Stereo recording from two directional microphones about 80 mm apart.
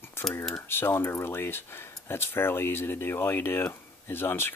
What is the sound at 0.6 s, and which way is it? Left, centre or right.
Speech, left.